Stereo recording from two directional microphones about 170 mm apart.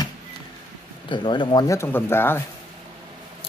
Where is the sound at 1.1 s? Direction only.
25° left (ahead or behind).